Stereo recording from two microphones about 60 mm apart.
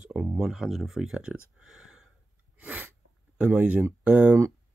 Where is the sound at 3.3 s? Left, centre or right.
Right.